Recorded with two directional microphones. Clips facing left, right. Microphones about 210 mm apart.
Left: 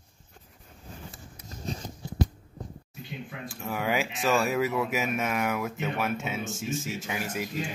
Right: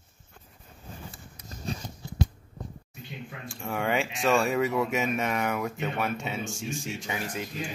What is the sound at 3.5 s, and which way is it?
Speech, 5° left (ahead or behind).